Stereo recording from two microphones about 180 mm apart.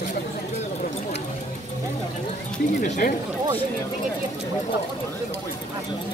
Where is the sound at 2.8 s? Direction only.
50° left (ahead or behind).